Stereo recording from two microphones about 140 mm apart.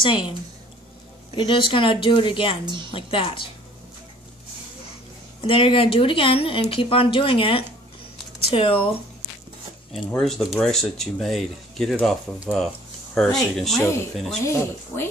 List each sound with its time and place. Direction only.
0.0 s a woman's voice: 35° left (ahead or behind)
1.3 s a woman's voice: 35° left (ahead or behind)
2.6 s a woman's voice: 35° right (ahead or behind)
2.9 s a woman's voice: 35° left (ahead or behind)
5.4 s a woman's voice: 40° left (ahead or behind)
10.1 s speech: centre (ahead or behind)
14.4 s speech: 20° left (ahead or behind)